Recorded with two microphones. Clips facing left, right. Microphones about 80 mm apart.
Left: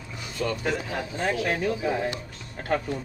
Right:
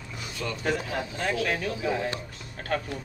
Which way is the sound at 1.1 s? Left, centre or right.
Left.